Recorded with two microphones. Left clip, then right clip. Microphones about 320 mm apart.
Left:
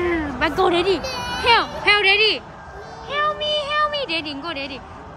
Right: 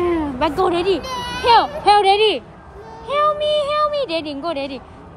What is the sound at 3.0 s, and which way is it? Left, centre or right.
Speech, centre.